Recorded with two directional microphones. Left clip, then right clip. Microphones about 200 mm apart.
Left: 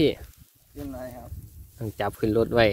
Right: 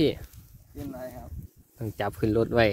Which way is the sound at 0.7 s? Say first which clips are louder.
Left 1 dB; 15° left (ahead or behind).